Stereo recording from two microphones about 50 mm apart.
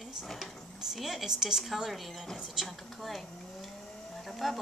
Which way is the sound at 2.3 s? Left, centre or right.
Centre.